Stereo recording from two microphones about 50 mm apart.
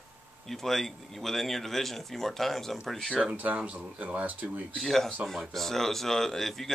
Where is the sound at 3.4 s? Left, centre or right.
Right.